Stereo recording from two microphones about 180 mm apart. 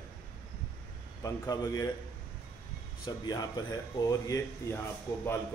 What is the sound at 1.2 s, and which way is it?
Speech, 20° left (ahead or behind).